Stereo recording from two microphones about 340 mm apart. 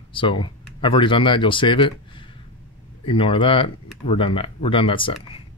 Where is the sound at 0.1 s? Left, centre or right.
Centre.